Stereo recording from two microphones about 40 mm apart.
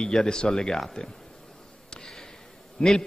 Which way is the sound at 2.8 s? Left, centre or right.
Left.